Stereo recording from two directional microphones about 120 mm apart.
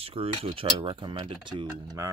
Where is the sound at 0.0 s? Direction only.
55° right (ahead or behind).